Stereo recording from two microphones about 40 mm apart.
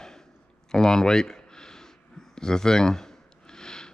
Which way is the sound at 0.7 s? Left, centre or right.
Centre.